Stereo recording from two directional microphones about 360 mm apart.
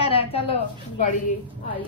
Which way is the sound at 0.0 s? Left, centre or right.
Centre.